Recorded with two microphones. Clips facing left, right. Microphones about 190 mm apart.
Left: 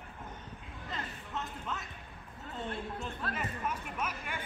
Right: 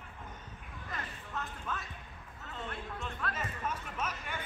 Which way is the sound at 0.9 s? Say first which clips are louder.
Left 2 dB; 20° left (ahead or behind).